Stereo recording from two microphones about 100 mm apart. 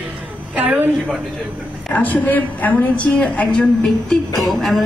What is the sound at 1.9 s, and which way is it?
A woman's voice, 15° left (ahead or behind).